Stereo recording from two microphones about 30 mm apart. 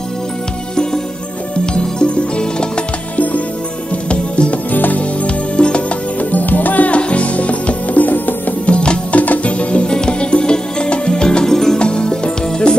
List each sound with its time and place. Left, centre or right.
1.7 s music: left
3.2 s music: left
4.1 s music: left
5.6 s music: left
6.3 s music: left
6.9 s music: left
8.6 s music: left
9.1 s music: left
9.4 s music: left
9.8 s music: left
11.4 s music: centre
11.8 s music: left